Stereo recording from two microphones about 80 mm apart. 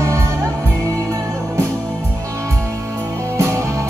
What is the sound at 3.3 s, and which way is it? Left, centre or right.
Music, right.